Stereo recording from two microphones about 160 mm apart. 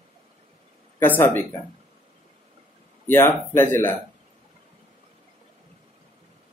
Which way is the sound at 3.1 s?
15° left (ahead or behind).